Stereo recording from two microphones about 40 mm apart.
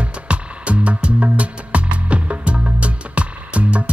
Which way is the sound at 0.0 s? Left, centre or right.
Right.